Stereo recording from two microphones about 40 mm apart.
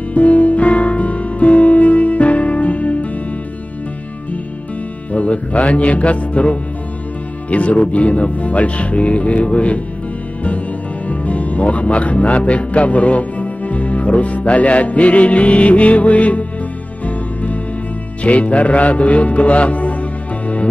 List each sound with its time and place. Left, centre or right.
0.1 s music: left
5.1 s music: left
7.4 s speech: left
11.1 s speech: left
17.0 s music: left
18.2 s speech: left